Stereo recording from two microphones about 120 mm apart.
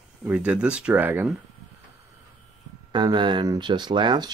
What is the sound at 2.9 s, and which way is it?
Speech, 40° right (ahead or behind).